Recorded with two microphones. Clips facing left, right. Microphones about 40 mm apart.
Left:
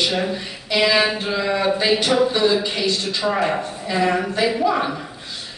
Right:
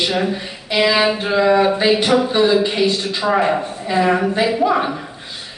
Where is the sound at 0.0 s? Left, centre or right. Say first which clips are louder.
Right 2 dB; centre.